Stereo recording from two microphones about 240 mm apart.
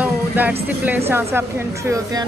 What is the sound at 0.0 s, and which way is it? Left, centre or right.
A woman's voice, centre.